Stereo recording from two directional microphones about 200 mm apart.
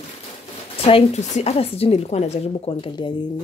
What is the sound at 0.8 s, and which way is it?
Speech, 30° left (ahead or behind).